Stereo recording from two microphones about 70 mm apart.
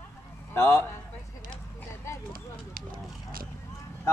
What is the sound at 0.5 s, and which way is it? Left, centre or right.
Speech, left.